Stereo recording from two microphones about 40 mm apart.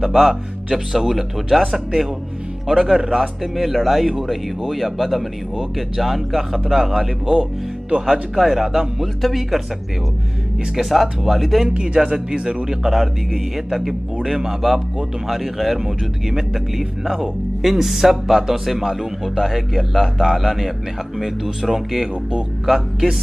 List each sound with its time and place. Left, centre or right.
0.0 s speech: centre
10.8 s speech: centre
11.7 s speech: centre
12.4 s a man's voice: right
12.6 s speech: centre